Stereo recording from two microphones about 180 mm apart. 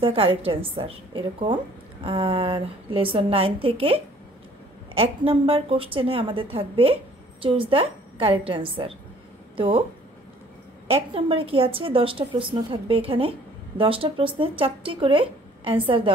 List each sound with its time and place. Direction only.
0.0 s a woman's voice: 30° right (ahead or behind)
10.9 s a woman's voice: 30° right (ahead or behind)